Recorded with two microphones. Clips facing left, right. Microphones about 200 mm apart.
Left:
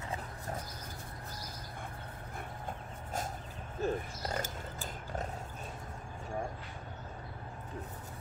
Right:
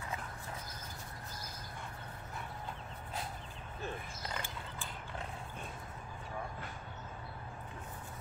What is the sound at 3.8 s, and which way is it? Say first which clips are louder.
Mechanisms: left 9 dB; 40° left (ahead or behind).